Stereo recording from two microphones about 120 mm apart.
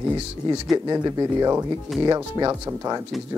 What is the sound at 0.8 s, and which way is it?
Speech, 35° right (ahead or behind).